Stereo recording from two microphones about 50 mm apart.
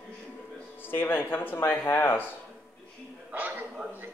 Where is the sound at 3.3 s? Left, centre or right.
Right.